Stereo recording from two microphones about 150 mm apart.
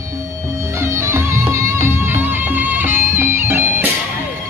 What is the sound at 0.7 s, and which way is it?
Music, 20° right (ahead or behind).